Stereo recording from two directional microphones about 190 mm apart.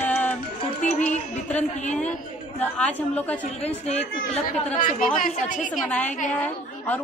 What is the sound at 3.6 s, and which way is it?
A woman's voice, 35° left (ahead or behind).